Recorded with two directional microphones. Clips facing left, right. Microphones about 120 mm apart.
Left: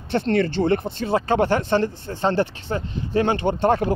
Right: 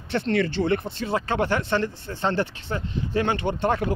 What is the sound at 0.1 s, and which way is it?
Speech, 45° left (ahead or behind).